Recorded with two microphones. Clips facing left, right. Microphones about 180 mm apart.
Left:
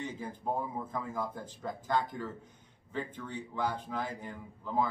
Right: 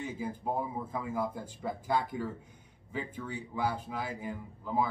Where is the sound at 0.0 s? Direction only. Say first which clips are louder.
Right 2 dB; 10° right (ahead or behind).